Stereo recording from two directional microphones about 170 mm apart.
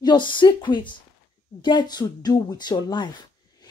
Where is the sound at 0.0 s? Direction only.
25° left (ahead or behind).